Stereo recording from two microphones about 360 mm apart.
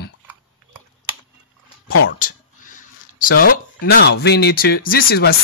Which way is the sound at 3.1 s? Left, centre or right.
Left.